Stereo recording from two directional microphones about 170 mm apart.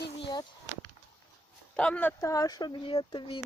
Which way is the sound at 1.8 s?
10° left (ahead or behind).